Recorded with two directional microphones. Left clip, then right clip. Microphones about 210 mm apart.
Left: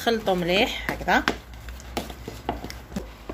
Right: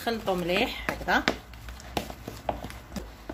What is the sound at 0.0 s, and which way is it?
Speech, 15° left (ahead or behind).